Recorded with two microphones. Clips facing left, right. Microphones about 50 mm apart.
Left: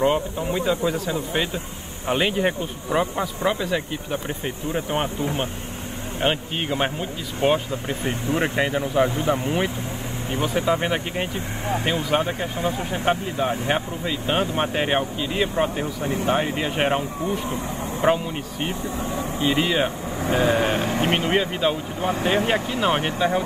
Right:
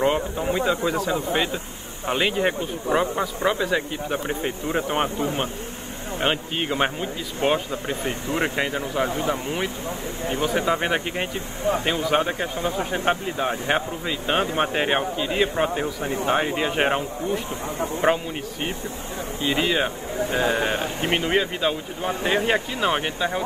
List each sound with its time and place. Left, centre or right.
0.4 s speech: centre
6.2 s speech: centre
18.0 s speech: centre
20.7 s speech: left
21.1 s speech: centre